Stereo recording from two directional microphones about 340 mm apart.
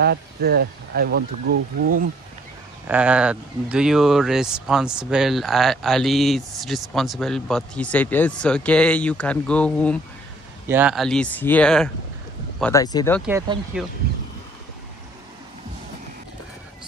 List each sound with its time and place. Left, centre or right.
0.0 s speech: right
2.9 s speech: centre
13.3 s speech: centre